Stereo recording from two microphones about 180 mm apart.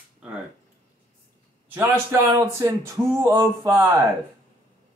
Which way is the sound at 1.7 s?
10° right (ahead or behind).